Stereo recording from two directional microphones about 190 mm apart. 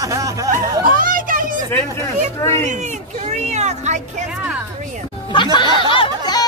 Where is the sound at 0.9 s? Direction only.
45° right (ahead or behind).